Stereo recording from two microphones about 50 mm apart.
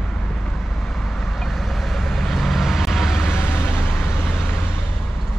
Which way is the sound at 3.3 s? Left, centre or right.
Left.